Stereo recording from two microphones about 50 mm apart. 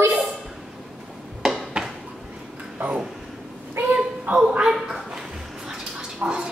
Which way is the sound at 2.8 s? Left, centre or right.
Right.